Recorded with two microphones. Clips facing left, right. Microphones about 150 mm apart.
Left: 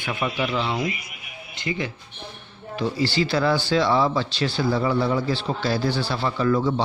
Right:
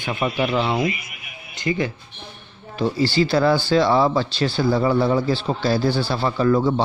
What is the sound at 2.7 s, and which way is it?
Speech, 35° right (ahead or behind).